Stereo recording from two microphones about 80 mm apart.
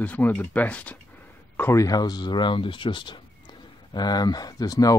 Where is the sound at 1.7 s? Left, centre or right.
Left.